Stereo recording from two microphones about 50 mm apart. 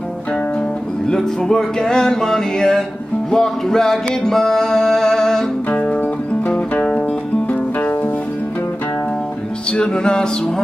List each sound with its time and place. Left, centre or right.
1.0 s music: centre
6.8 s music: centre
9.7 s music: centre